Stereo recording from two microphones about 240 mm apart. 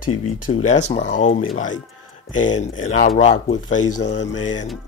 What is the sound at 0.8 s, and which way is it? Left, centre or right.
Speech, left.